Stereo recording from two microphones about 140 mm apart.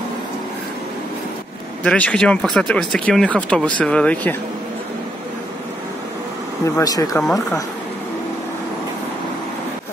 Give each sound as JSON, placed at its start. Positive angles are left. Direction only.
{"t": 1.8, "sound": "speech", "side_deg": 10}
{"t": 6.6, "sound": "speech", "side_deg": 25}